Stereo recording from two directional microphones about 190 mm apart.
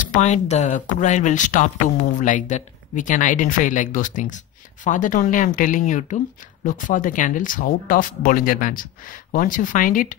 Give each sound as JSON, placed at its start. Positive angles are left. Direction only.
{"t": 0.0, "sound": "speech", "side_deg": 40}